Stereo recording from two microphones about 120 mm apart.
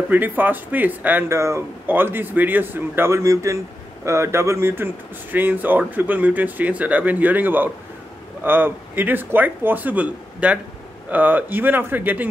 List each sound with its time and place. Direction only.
0.1 s speech: 15° right (ahead or behind)